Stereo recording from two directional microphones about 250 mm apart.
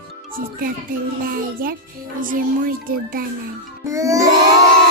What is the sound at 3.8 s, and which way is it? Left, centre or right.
Music, centre.